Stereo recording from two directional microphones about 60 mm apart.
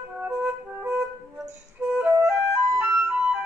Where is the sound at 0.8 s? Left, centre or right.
Right.